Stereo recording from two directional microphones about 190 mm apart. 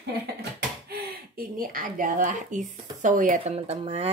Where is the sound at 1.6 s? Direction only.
45° right (ahead or behind).